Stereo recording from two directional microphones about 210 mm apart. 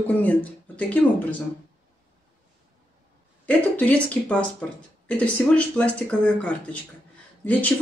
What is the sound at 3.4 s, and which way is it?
Speech, 5° left (ahead or behind).